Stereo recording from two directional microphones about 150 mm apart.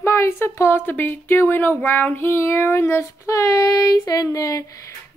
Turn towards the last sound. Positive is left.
turn(degrees=20)  # may be behind; listen again after turning